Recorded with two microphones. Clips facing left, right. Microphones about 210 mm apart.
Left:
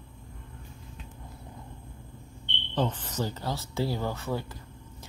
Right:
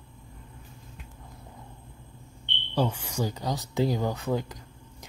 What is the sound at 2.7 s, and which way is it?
Speech, 10° right (ahead or behind).